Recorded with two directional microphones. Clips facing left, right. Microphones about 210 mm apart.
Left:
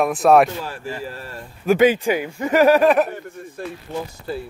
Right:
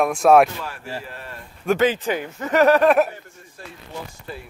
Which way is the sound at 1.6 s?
15° left (ahead or behind).